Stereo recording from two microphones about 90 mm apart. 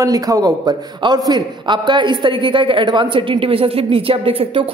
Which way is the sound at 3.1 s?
80° right.